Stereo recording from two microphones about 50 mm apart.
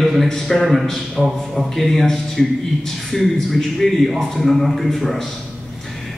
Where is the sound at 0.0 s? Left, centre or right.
Centre.